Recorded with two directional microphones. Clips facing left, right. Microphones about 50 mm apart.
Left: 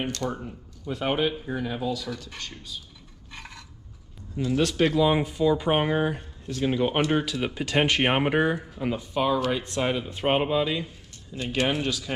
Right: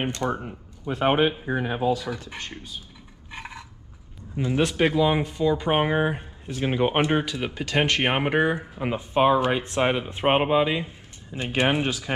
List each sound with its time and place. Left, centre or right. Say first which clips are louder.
0.0 s speech: right 3 dB; right
3.3 s a sound: right 5 dB; centre
4.4 s speech: right 1 dB; right
5.0 s speech: even; centre; by 7.2 s right
7.2 s speech: left 1 dB; centre
7.5 s speech: right 1 dB; centre
8.0 s speech: even; centre; by 12.1 s right